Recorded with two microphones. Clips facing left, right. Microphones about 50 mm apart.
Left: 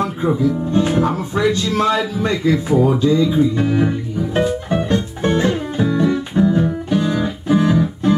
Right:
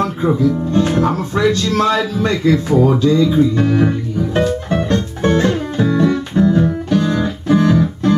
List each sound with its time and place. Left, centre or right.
0.4 s speech: centre
4.3 s music: centre
5.9 s music: right
6.1 s music: centre